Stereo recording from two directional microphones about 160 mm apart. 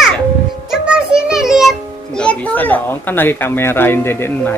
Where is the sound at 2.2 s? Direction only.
10° left (ahead or behind).